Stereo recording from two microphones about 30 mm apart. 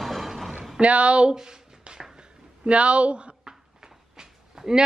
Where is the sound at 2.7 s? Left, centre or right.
Right.